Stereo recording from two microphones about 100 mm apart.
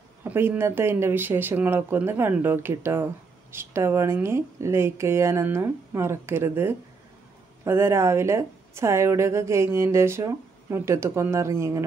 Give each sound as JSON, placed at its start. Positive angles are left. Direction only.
{"t": 0.2, "sound": "a woman's voice", "side_deg": -25}